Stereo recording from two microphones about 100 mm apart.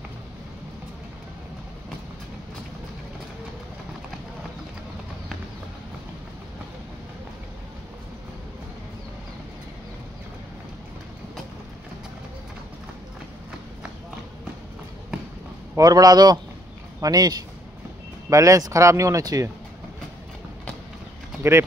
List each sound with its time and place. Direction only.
15.7 s speech: 40° right (ahead or behind)
21.4 s speech: 25° right (ahead or behind)